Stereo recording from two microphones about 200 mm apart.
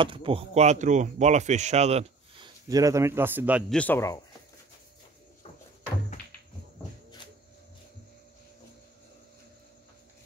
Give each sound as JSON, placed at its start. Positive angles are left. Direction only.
{"t": 0.0, "sound": "speech", "side_deg": -25}
{"t": 3.7, "sound": "speech", "side_deg": 10}